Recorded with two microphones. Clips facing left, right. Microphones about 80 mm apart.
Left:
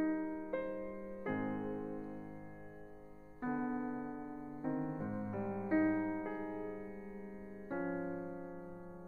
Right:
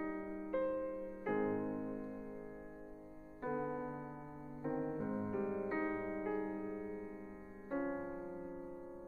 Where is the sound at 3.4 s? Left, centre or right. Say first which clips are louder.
Left 2 dB; centre.